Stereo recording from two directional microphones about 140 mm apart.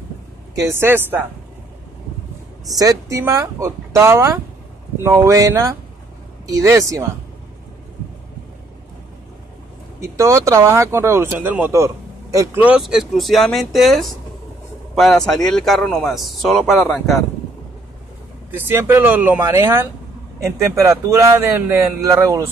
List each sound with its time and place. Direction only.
0.6 s speech: 15° right (ahead or behind)
2.7 s speech: 25° right (ahead or behind)
9.9 s speech: 20° right (ahead or behind)
12.5 s speech: 10° right (ahead or behind)
18.5 s speech: 15° right (ahead or behind)